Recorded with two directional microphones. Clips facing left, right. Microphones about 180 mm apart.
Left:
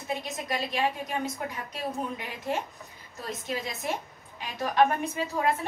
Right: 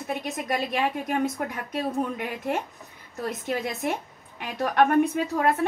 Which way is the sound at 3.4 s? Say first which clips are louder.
Right 4 dB; 60° right (ahead or behind).